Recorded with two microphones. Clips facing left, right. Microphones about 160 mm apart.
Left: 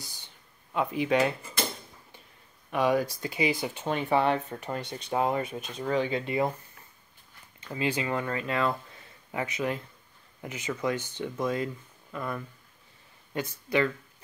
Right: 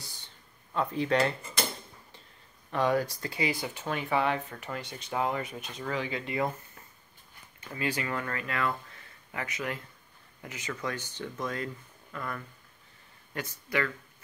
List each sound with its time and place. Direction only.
0.7 s speech: 15° left (ahead or behind)
2.7 s speech: 15° left (ahead or behind)
7.7 s speech: 20° left (ahead or behind)